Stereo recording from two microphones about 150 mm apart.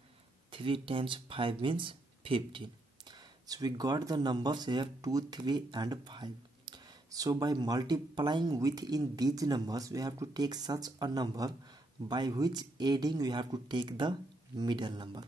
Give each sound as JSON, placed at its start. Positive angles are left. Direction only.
{"t": 0.5, "sound": "speech", "side_deg": -35}